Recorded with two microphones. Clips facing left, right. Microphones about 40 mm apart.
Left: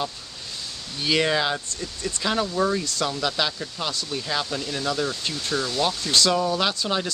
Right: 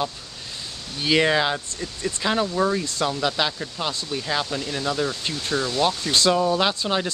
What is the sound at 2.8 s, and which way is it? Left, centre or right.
Speech, right.